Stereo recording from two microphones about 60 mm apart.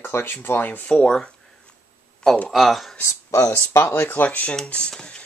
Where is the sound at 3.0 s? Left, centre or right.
Left.